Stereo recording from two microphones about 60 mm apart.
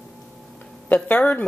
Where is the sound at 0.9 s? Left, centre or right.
Left.